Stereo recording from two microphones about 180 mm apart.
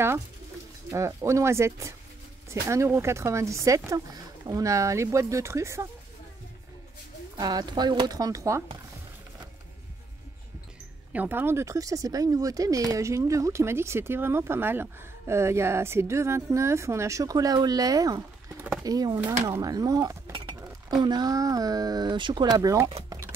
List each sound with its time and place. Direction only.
0.8 s speech: 15° right (ahead or behind)
7.3 s speech: 20° right (ahead or behind)
11.1 s speech: 10° right (ahead or behind)
23.0 s a sound: 15° right (ahead or behind)